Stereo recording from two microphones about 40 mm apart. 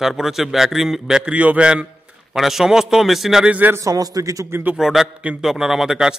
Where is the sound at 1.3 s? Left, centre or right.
Right.